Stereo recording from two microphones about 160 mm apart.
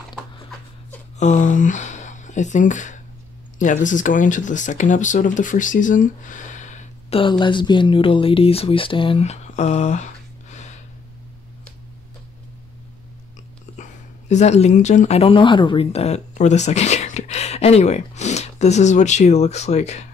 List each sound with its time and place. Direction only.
1.2 s speech: 50° left (ahead or behind)
7.2 s speech: 30° left (ahead or behind); by 10.0 s 45° left (ahead or behind)
10.5 s gasp: 45° left (ahead or behind)
13.7 s a sound: 45° left (ahead or behind)
14.3 s speech: 45° left (ahead or behind)